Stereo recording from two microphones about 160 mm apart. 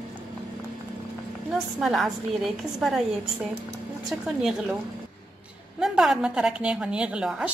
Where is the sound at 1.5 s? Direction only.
Centre (ahead or behind).